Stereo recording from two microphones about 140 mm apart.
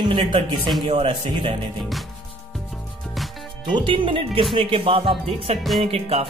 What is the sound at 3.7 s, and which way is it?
Music, 35° right (ahead or behind).